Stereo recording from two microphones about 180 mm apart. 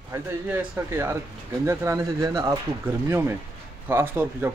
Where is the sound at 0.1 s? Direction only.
15° right (ahead or behind).